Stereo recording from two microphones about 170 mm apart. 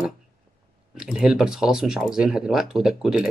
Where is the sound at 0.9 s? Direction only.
5° right (ahead or behind).